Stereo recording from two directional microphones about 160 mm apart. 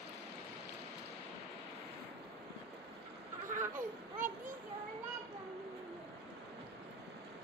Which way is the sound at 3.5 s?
55° right (ahead or behind).